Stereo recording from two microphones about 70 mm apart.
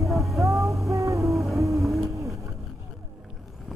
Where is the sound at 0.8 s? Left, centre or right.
Right.